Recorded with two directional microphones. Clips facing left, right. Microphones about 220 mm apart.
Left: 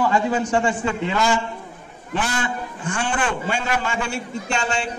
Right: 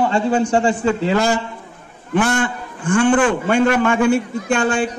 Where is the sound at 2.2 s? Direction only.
55° right (ahead or behind).